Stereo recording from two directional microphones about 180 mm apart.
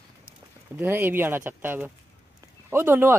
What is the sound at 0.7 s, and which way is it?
Speech, 10° right (ahead or behind).